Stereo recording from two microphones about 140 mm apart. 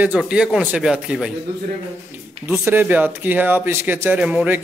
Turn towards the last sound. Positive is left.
turn(degrees=-10)  # may be behind; listen again after turning